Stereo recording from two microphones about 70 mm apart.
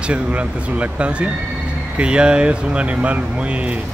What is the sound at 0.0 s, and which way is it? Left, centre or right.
Speech, centre.